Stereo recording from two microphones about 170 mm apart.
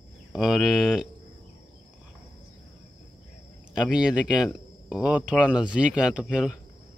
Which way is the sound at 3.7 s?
5° right (ahead or behind).